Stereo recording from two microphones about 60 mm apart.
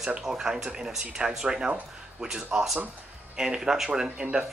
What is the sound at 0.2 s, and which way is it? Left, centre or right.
Speech, centre.